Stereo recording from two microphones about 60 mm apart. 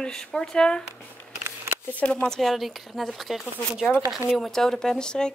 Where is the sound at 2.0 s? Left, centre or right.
Centre.